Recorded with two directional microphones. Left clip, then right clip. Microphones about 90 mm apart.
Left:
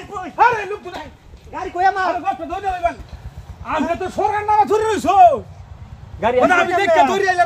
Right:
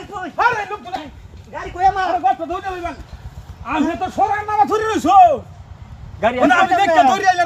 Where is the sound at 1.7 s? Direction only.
35° left (ahead or behind).